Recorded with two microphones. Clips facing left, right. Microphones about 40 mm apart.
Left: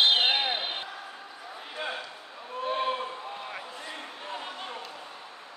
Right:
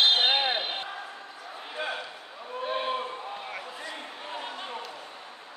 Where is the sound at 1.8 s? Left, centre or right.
Centre.